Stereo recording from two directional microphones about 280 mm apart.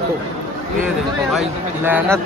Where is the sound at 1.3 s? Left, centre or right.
Centre.